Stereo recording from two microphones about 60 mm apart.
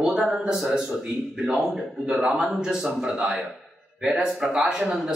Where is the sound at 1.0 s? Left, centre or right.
Centre.